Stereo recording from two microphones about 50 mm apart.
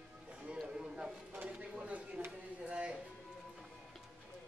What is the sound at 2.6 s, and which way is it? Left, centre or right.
Music, right.